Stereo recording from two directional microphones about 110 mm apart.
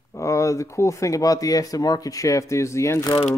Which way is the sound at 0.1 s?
30° left (ahead or behind).